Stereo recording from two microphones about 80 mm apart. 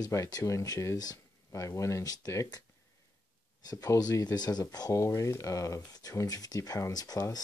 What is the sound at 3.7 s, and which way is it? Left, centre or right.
Speech, left.